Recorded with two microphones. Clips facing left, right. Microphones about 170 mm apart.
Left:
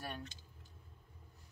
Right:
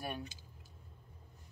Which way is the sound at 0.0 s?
10° right (ahead or behind).